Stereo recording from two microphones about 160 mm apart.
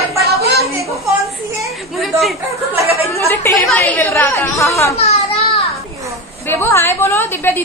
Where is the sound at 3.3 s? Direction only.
15° left (ahead or behind).